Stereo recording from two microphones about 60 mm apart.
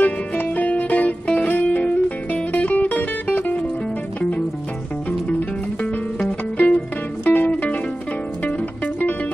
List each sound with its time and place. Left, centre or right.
0.0 s music: left
5.8 s music: left